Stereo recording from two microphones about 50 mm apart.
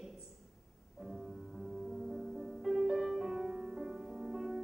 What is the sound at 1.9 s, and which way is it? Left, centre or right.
Music, centre.